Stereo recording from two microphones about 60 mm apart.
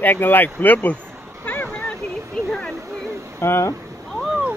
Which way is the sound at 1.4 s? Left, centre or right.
Left.